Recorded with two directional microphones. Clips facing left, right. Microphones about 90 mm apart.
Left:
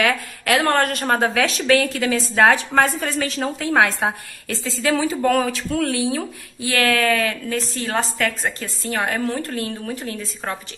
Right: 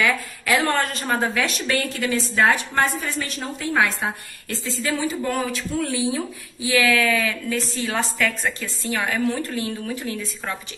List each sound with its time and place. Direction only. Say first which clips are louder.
0.0 s a woman's voice: left 2 dB; 55° left (ahead or behind); by 10.5 s 40° left (ahead or behind)